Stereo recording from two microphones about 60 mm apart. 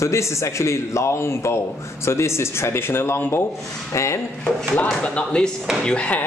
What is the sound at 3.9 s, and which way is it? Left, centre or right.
Speech, left.